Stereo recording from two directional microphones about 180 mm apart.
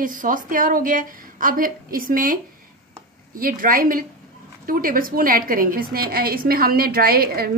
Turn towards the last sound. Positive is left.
turn(degrees=-60)  # may be behind; listen again after turning